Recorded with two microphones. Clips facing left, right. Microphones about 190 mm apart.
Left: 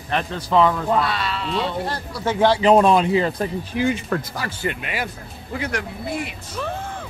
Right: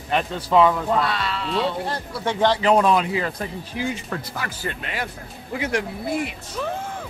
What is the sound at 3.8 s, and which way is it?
Speech, 55° left (ahead or behind).